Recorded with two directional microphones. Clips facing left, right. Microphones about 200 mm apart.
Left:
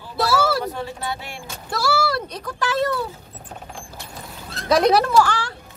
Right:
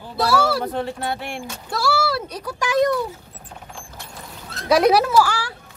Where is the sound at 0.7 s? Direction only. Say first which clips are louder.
Right 4 dB; 55° right (ahead or behind).